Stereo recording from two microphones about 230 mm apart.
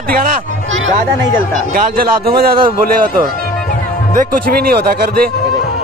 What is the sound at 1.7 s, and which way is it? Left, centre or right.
Speech, right.